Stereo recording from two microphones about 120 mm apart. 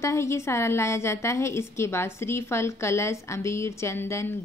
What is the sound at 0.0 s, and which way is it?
Speech, 25° left (ahead or behind).